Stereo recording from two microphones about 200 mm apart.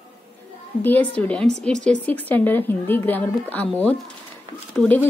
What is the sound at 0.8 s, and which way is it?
Speech, 10° left (ahead or behind).